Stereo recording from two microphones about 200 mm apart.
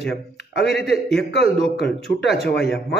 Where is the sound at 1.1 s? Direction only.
5° left (ahead or behind).